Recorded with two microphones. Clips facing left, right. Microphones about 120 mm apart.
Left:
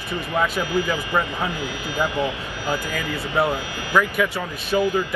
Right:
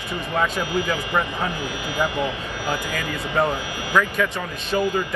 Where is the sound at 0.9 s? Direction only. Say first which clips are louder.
Even; 15° left (ahead or behind).